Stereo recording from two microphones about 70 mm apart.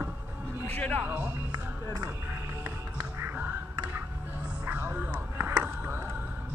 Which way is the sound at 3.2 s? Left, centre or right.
Right.